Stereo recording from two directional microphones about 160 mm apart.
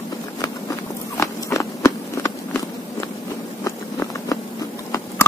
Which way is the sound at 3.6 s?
20° left (ahead or behind).